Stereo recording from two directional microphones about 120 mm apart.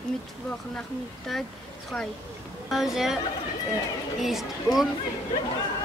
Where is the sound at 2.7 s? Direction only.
Centre (ahead or behind).